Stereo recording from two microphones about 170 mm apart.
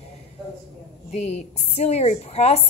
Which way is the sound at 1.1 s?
40° left (ahead or behind).